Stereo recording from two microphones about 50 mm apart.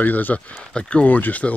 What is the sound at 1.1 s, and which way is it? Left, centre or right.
Speech, left.